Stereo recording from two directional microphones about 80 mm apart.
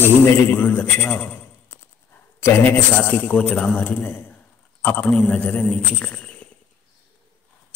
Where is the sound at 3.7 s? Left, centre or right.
Left.